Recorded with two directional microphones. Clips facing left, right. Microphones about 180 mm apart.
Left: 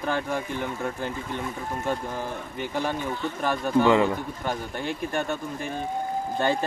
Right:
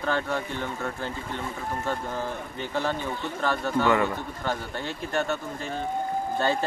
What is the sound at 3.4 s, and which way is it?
Speech, 15° left (ahead or behind).